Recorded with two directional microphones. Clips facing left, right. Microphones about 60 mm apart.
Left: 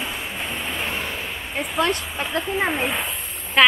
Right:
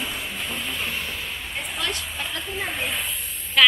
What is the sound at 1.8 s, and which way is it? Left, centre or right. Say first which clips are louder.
Speech: left 9 dB; left.